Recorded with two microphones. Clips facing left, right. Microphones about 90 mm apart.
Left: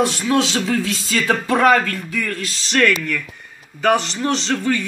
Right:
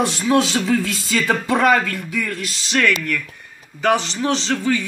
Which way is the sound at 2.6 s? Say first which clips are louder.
Left 2 dB; 5° right (ahead or behind).